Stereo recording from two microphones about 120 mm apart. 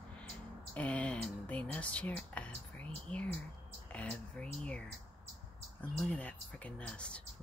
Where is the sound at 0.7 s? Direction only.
10° left (ahead or behind).